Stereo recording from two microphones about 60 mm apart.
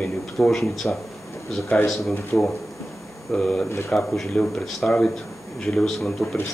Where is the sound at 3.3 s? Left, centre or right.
Centre.